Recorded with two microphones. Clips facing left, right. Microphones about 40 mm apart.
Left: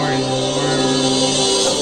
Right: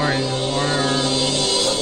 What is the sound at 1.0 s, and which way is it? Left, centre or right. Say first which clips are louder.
Music: left 4 dB; left.